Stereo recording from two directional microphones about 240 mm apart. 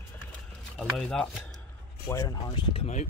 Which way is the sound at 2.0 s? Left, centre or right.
Centre.